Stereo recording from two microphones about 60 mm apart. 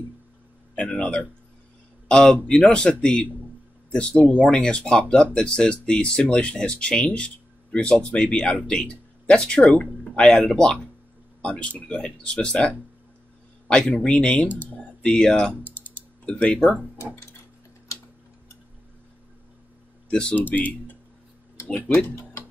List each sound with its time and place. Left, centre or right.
0.7 s a man's voice: left
15.6 s typing: left
16.3 s speech: centre
16.5 s speech: centre
20.1 s speech: centre
20.3 s speech: left